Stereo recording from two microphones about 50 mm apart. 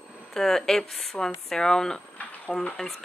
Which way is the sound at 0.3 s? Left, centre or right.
Centre.